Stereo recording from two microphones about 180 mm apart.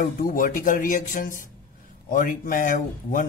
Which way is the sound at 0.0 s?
50° left (ahead or behind).